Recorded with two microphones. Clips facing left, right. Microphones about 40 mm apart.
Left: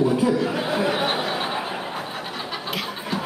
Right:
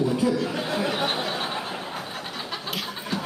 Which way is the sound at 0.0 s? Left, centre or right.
Centre.